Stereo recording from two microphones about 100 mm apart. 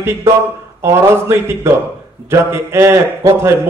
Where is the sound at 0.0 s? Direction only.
25° right (ahead or behind).